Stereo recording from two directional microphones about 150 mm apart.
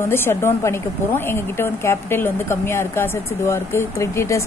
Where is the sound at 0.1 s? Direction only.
15° left (ahead or behind).